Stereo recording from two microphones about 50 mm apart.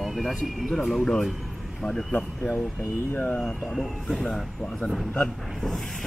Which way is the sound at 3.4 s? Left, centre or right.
Centre.